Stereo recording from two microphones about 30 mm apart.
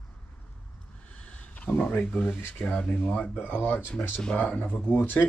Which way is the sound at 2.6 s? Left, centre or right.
Left.